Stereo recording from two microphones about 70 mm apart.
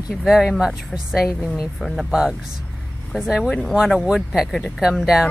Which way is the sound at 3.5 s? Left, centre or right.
Centre.